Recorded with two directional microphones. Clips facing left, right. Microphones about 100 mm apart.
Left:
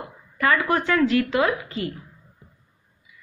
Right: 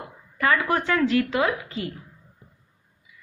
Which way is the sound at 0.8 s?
25° right (ahead or behind).